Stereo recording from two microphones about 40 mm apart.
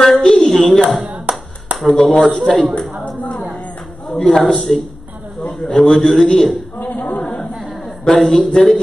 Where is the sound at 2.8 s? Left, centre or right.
Left.